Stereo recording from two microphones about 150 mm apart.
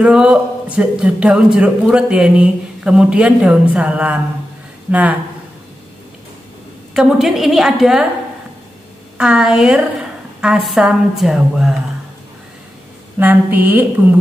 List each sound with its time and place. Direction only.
0.0 s a woman's voice: 5° right (ahead or behind)
6.9 s a woman's voice: 5° right (ahead or behind)
9.2 s a woman's voice: 5° right (ahead or behind)
13.2 s speech: 10° right (ahead or behind)